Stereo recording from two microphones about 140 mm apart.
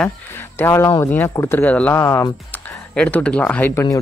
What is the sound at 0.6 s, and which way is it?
Speech, 20° left (ahead or behind).